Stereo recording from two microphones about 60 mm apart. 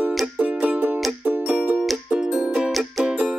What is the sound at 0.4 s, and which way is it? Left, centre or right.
Music, right.